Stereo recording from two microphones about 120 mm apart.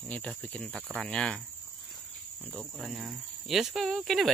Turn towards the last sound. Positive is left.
turn(degrees=0)  # may be behind; listen again after turning